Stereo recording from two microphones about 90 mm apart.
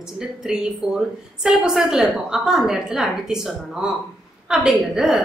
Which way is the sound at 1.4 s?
5° right (ahead or behind).